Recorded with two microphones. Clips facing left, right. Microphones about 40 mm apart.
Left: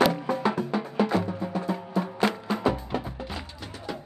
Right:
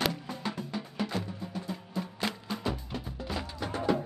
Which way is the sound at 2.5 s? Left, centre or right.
Left.